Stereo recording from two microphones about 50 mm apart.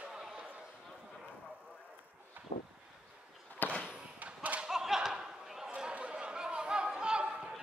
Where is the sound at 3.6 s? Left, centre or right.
Left.